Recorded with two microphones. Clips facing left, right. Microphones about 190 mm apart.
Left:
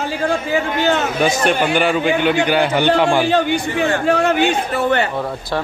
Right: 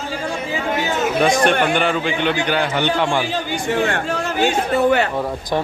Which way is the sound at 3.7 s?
65° right (ahead or behind).